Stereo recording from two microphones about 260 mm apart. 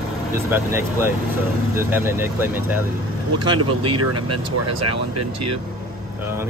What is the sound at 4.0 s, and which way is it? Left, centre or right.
Speech, right.